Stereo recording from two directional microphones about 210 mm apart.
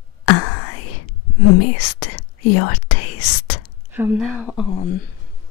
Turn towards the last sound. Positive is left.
turn(degrees=25)  # may be behind; listen again after turning